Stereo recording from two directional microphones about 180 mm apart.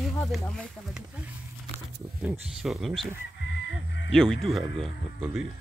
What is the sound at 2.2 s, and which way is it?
Speech, 5° right (ahead or behind).